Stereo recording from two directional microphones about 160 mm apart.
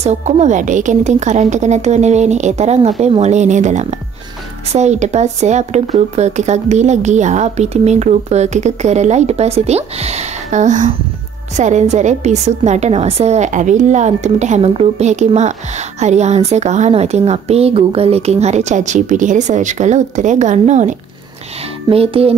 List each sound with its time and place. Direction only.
0.0 s speech: 45° right (ahead or behind)
21.8 s speech: 35° right (ahead or behind)